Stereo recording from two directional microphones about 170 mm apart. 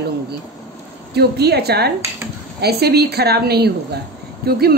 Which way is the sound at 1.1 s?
75° right (ahead or behind).